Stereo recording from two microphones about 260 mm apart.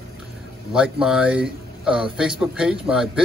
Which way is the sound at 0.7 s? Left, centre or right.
Centre.